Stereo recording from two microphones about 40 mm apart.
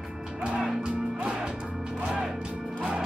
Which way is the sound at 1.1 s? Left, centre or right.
Right.